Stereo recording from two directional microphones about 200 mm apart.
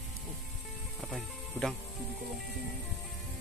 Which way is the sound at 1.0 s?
Centre (ahead or behind).